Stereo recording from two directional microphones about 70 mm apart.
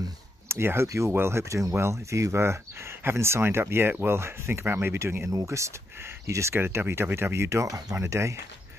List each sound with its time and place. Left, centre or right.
0.5 s speech: right
4.9 s speech: right